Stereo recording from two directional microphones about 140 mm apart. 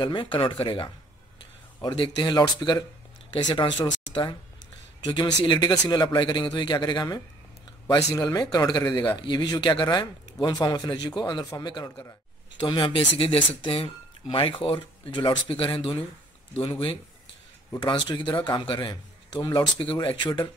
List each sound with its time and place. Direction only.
0.0 s speech: 35° left (ahead or behind)
8.1 s speech: 20° left (ahead or behind)